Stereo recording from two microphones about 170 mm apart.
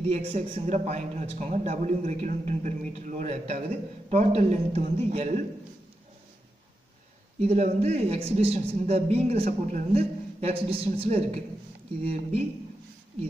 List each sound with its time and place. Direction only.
0.0 s a man's voice: 40° right (ahead or behind)
7.3 s a man's voice: 40° right (ahead or behind)